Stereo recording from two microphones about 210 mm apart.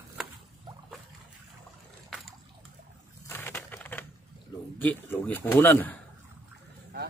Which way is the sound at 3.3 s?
10° left (ahead or behind).